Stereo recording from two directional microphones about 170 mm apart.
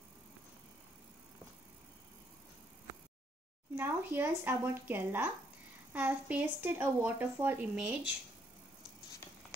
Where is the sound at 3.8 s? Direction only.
10° right (ahead or behind).